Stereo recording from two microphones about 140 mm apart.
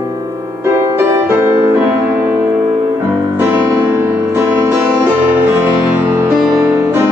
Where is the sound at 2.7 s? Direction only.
25° right (ahead or behind).